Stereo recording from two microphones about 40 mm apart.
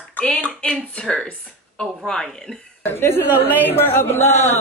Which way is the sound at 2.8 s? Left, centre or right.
Left.